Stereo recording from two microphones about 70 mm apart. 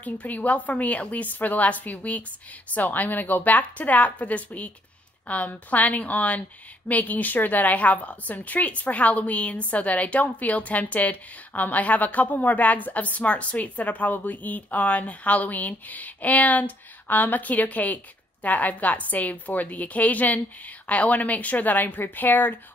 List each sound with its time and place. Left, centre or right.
0.0 s a woman's voice: left